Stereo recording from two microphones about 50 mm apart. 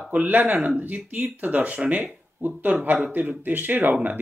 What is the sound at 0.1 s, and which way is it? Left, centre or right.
Speech, right.